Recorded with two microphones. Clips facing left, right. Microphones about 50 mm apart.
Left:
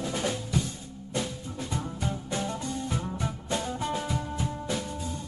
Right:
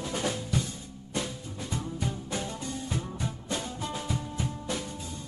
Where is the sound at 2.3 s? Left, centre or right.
Left.